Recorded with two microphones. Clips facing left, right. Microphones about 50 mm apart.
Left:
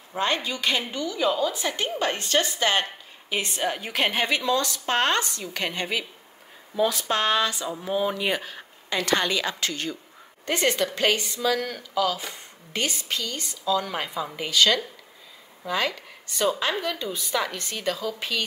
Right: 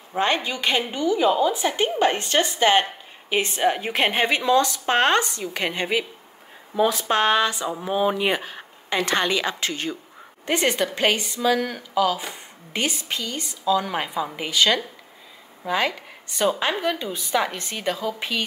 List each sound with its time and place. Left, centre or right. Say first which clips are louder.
0.2 s a woman's voice: right 3 dB; right